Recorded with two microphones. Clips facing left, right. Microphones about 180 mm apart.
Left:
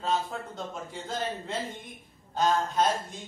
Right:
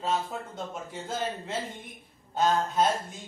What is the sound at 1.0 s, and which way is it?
A man's voice, centre (ahead or behind).